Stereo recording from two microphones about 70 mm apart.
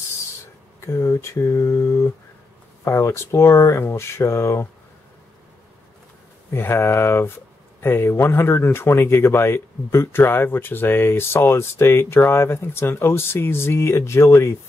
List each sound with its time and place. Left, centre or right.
0.7 s speech: left
6.5 s speech: left